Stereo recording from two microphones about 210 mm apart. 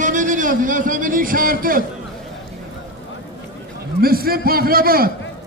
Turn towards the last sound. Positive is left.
turn(degrees=-45)  # may be behind; listen again after turning